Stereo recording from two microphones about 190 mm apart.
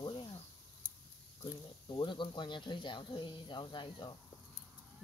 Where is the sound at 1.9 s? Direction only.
25° left (ahead or behind).